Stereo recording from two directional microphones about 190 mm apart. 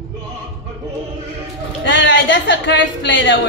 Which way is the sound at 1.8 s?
75° left (ahead or behind).